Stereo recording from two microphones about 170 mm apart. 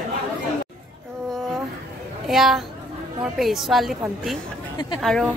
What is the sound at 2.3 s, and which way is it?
A woman's voice, centre (ahead or behind).